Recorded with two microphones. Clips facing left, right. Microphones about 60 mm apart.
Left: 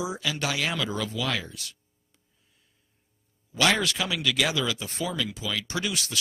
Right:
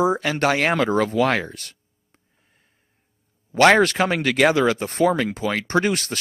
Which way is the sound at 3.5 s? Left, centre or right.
Right.